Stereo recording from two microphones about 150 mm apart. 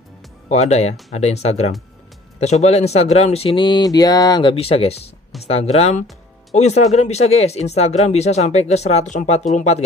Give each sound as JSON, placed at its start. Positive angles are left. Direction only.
{"t": 0.5, "sound": "speech", "side_deg": 45}